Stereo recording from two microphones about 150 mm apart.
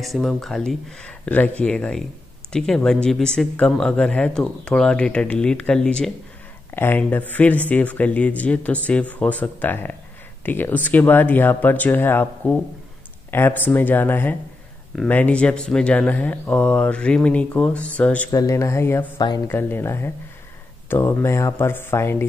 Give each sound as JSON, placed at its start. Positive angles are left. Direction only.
{"t": 0.0, "sound": "speech", "side_deg": 0}
{"t": 18.3, "sound": "speech", "side_deg": 20}
{"t": 19.1, "sound": "speech", "side_deg": 30}
{"t": 19.4, "sound": "speech", "side_deg": 15}